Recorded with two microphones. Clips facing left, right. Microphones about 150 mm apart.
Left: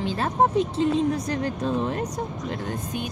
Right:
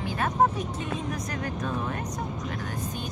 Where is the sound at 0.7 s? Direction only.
30° left (ahead or behind).